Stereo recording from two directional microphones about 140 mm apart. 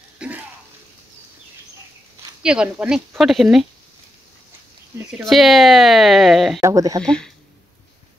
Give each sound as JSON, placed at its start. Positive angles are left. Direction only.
{"t": 0.2, "sound": "a sound", "side_deg": -5}
{"t": 2.4, "sound": "speech", "side_deg": -5}
{"t": 5.2, "sound": "speech", "side_deg": 0}
{"t": 6.6, "sound": "speech", "side_deg": -25}
{"t": 7.0, "sound": "speech", "side_deg": 5}